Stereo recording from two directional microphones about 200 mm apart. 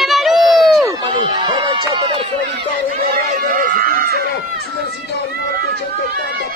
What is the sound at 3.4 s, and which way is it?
Speech, 45° right (ahead or behind).